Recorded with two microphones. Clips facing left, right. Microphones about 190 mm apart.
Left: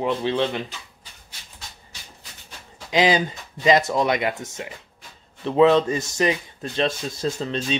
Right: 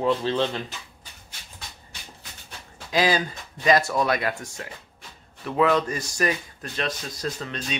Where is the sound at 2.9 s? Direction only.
20° left (ahead or behind).